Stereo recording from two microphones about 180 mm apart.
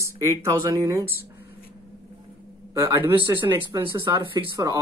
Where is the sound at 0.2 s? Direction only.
15° right (ahead or behind).